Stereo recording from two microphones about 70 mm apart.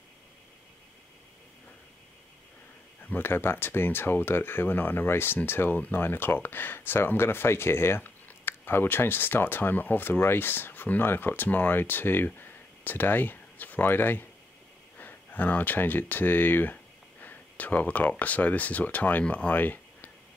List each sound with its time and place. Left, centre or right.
3.0 s speech: left